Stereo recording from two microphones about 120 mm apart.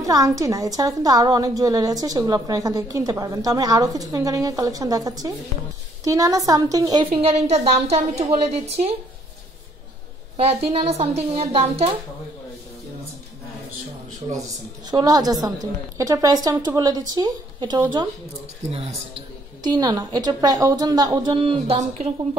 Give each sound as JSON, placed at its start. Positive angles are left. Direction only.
{"t": 0.0, "sound": "a woman's voice", "side_deg": -30}
{"t": 7.1, "sound": "a woman's voice", "side_deg": -55}
{"t": 10.3, "sound": "a woman's voice", "side_deg": -60}
{"t": 14.9, "sound": "a woman's voice", "side_deg": -30}
{"t": 18.7, "sound": "a woman's voice", "side_deg": -55}
{"t": 19.7, "sound": "a woman's voice", "side_deg": -35}
{"t": 21.7, "sound": "a woman's voice", "side_deg": -65}